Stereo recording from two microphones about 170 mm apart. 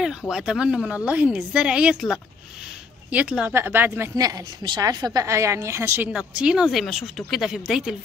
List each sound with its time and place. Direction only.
0.3 s speech: 5° right (ahead or behind)